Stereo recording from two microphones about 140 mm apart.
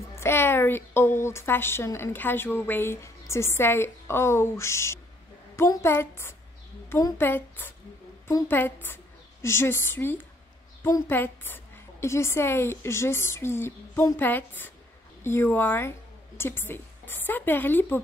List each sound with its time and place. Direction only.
0.1 s a woman's voice: 20° left (ahead or behind)
7.2 s a woman's voice: 15° left (ahead or behind)